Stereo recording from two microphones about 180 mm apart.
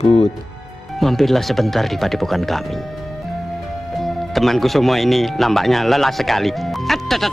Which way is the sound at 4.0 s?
Centre (ahead or behind).